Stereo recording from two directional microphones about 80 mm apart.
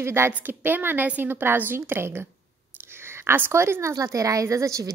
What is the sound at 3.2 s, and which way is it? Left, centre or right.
A woman's voice, right.